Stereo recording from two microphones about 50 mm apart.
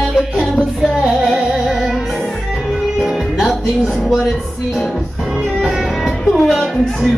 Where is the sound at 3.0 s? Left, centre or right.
Centre.